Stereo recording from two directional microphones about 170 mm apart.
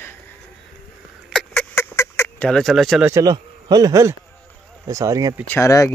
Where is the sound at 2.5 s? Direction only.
Centre (ahead or behind).